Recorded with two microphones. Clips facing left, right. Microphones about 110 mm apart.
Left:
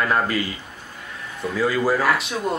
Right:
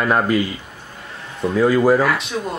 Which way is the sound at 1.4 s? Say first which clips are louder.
Right 6 dB; 20° right (ahead or behind).